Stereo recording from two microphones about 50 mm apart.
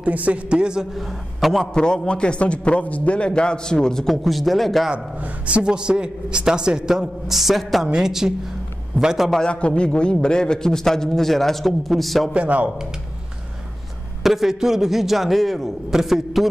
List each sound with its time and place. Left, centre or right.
0.0 s a man's voice: right
0.9 s a man's voice: centre
1.6 s a man's voice: centre
4.9 s a man's voice: right; by 9.3 s centre
9.4 s a man's voice: centre
12.4 s speech: right
14.2 s a man's voice: centre